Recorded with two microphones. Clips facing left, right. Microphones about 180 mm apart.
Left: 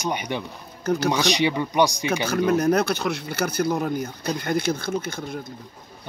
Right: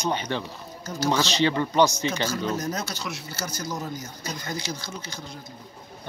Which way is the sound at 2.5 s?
60° left (ahead or behind).